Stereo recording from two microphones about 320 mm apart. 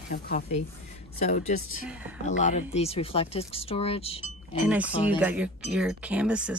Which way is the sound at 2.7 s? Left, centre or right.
Centre.